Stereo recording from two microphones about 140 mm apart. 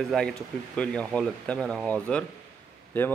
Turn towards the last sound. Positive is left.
turn(degrees=15)  # may be behind; listen again after turning